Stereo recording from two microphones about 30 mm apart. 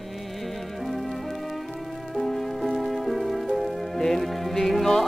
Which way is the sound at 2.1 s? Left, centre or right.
Centre.